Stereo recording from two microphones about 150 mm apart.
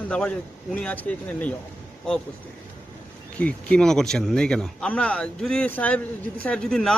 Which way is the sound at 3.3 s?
5° left (ahead or behind).